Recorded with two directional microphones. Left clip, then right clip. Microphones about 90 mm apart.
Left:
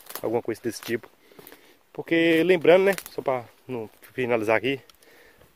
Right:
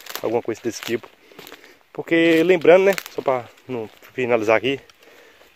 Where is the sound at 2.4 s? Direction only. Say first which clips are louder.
Right 4 dB; 20° left (ahead or behind).